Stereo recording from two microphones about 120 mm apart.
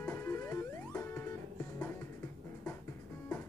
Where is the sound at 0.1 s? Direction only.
25° left (ahead or behind).